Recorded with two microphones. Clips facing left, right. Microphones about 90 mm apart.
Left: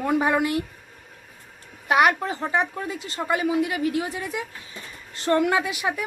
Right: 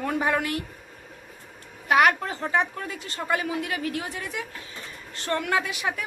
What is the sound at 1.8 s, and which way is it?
A man's voice, 20° left (ahead or behind).